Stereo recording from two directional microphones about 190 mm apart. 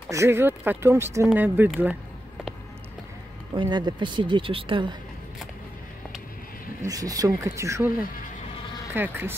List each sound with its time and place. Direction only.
0.1 s speech: 15° right (ahead or behind)
3.5 s speech: 25° right (ahead or behind)
6.8 s speech: 20° right (ahead or behind)
8.9 s speech: 10° right (ahead or behind)